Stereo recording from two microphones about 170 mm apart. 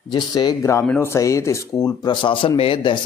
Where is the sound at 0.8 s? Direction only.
10° left (ahead or behind); by 3.0 s 30° left (ahead or behind).